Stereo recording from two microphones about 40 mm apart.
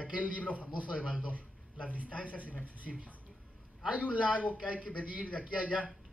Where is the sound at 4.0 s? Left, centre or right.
Left.